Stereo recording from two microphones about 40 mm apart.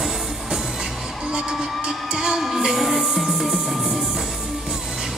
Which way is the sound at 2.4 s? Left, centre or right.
Centre.